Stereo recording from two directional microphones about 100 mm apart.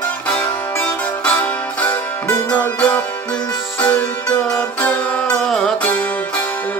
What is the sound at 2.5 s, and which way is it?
Music, 15° left (ahead or behind).